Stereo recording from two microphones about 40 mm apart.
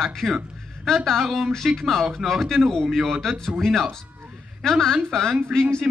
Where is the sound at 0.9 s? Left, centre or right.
Centre.